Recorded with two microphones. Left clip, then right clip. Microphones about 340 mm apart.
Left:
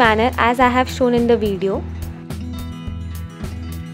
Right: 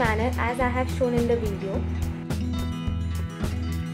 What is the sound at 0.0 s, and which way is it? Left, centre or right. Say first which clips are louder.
Speech: left 11 dB; left.